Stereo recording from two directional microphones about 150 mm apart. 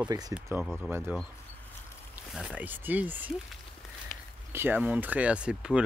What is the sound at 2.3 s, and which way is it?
Speech, 5° right (ahead or behind).